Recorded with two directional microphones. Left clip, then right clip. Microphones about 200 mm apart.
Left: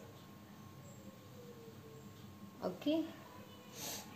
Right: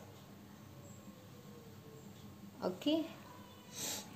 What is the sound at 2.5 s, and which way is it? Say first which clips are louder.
Speech: right 2 dB; 25° right (ahead or behind).